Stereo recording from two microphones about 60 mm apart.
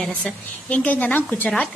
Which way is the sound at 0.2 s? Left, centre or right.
Left.